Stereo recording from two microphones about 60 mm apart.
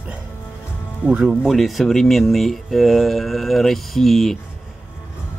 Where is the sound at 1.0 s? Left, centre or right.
Centre.